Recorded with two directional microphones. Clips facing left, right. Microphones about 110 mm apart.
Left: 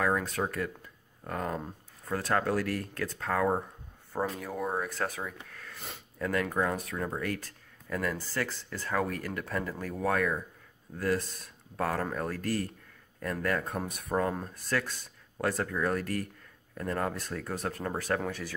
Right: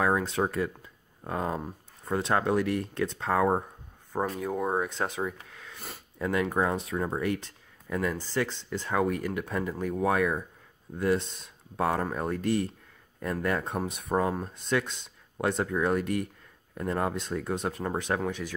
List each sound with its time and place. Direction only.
0.0 s speech: 25° right (ahead or behind)
4.1 s speech: 15° right (ahead or behind)
14.2 s speech: 10° right (ahead or behind)